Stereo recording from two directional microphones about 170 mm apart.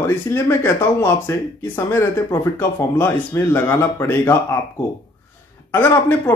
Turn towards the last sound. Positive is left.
turn(degrees=15)  # may be behind; listen again after turning